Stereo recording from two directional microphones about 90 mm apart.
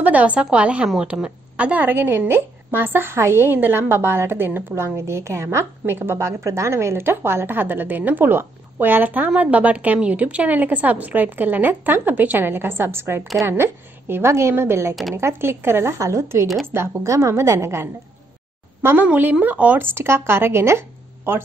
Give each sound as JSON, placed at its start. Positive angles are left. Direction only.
{"t": 0.0, "sound": "a woman's voice", "side_deg": -15}